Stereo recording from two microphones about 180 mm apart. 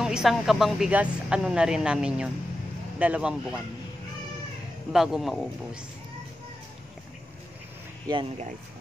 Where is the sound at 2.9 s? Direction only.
5° right (ahead or behind).